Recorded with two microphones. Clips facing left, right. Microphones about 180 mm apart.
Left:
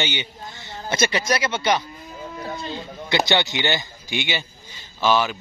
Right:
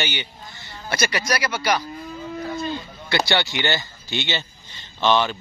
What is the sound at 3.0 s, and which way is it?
Speech, 20° left (ahead or behind).